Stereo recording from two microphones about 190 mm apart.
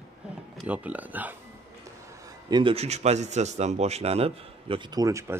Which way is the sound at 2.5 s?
25° right (ahead or behind).